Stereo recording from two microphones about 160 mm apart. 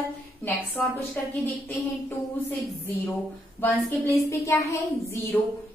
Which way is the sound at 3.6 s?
15° left (ahead or behind).